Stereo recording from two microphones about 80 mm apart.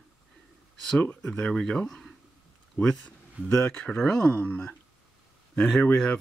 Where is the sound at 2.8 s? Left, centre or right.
Left.